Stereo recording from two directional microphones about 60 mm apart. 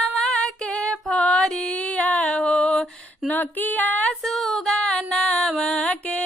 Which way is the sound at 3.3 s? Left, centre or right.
Left.